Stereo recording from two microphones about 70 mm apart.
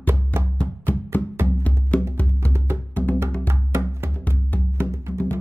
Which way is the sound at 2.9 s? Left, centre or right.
Left.